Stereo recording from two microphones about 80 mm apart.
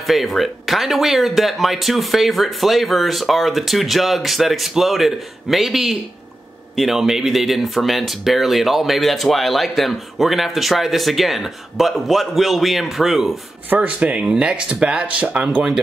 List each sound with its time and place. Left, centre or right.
0.0 s speech: centre
13.7 s speech: right